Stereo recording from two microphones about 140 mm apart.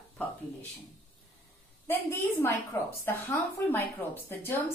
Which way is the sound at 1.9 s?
15° left (ahead or behind).